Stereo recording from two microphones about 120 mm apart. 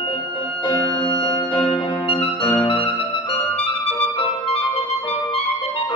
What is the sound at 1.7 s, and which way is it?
Music, 45° left (ahead or behind).